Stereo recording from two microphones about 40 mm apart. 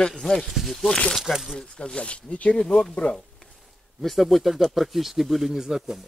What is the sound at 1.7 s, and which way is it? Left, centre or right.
Speech, left.